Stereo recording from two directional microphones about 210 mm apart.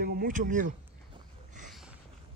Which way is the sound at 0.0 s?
45° right (ahead or behind).